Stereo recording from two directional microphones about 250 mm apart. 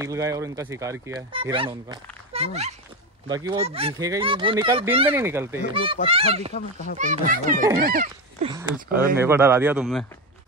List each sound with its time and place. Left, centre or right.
0.0 s speech: centre
5.7 s speech: right
6.5 s speech: left
7.0 s speech: right
8.5 s speech: centre